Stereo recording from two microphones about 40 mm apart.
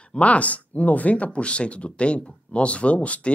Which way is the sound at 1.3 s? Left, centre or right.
Left.